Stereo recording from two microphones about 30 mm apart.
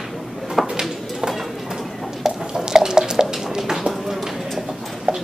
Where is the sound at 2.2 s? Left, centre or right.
Centre.